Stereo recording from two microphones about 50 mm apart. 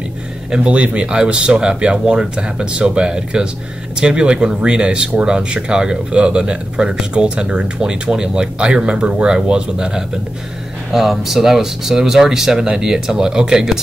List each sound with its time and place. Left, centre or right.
0.7 s speech: right
10.9 s speech: centre